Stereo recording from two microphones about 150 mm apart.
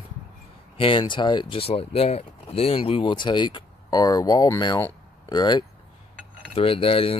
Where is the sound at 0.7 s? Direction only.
35° left (ahead or behind).